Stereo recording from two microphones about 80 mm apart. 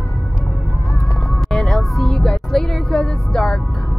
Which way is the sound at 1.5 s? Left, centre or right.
Centre.